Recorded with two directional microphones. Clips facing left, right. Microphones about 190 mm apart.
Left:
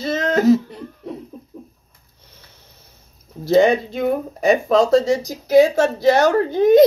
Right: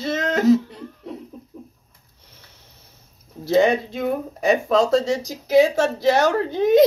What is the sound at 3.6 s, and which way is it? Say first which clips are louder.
Speech: left 3 dB; 5° right (ahead or behind).